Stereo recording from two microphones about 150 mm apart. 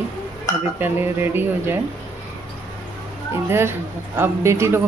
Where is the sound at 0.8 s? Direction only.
15° right (ahead or behind).